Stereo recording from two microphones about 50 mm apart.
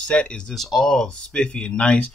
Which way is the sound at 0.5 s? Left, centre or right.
Centre.